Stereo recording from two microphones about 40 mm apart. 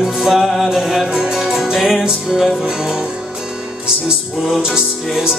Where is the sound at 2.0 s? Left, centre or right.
Centre.